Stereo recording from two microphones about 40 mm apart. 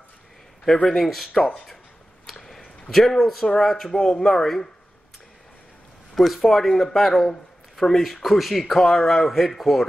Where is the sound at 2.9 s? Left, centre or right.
Centre.